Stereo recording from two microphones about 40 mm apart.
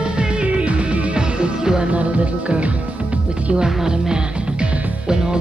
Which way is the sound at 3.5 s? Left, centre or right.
Centre.